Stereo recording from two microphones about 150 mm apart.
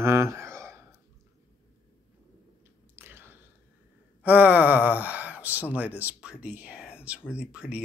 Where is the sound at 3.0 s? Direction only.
15° right (ahead or behind).